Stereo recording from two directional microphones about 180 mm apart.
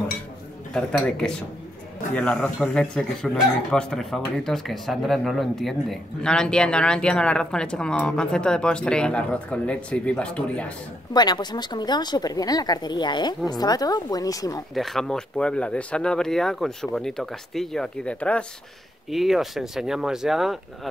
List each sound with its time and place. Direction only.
0.7 s speech: 5° left (ahead or behind)
11.1 s speech: 20° left (ahead or behind)
14.7 s speech: centre (ahead or behind)